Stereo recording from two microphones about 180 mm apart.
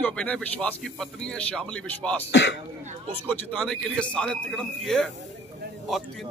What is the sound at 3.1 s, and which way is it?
A man's voice, 10° left (ahead or behind).